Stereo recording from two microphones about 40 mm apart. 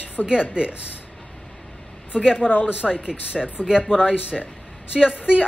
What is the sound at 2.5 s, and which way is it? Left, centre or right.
Speech, left.